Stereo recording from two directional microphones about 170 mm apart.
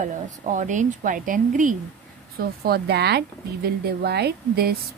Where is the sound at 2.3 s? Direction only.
65° right (ahead or behind).